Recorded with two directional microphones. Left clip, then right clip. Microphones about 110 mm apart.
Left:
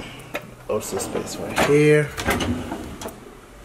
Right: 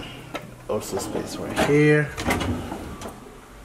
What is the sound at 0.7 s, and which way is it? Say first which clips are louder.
Speech: left 2 dB; centre (ahead or behind).